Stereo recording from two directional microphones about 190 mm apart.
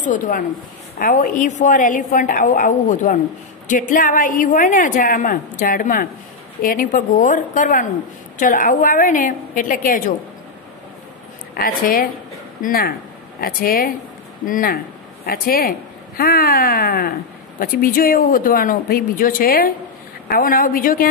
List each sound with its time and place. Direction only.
0.0 s a woman's voice: 45° left (ahead or behind)
11.5 s a woman's voice: 50° left (ahead or behind)